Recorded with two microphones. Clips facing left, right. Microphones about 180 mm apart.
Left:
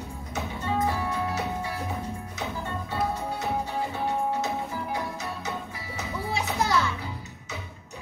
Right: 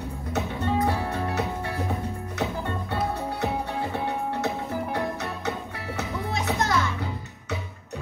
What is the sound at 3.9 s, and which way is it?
Music, 60° right (ahead or behind).